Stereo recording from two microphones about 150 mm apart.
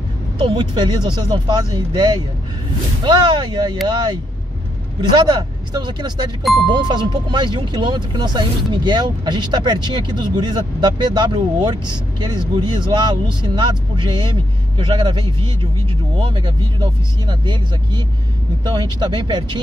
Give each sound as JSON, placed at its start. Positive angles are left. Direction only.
{"t": 0.4, "sound": "speech", "side_deg": -30}